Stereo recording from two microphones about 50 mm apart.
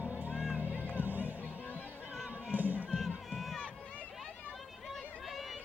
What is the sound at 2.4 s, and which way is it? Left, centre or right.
Crowd, right.